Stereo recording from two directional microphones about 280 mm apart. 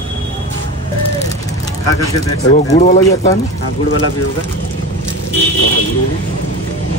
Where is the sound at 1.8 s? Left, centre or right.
Centre.